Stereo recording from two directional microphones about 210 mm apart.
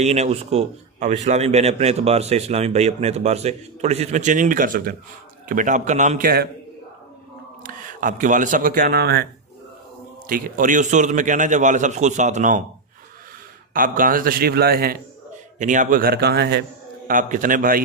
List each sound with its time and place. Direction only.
0.0 s a man's voice: 30° right (ahead or behind)
7.6 s speech: 40° right (ahead or behind)
10.2 s a man's voice: 40° right (ahead or behind)
13.7 s a man's voice: 40° right (ahead or behind)
17.1 s a man's voice: 40° right (ahead or behind)